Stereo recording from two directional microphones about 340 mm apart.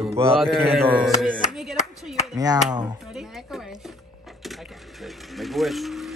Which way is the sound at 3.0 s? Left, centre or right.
Centre.